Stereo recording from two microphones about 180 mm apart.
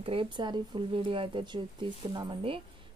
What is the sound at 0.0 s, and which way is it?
A woman's voice, 30° right (ahead or behind).